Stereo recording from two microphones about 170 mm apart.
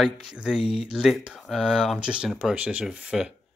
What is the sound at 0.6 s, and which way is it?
Speech, 35° left (ahead or behind).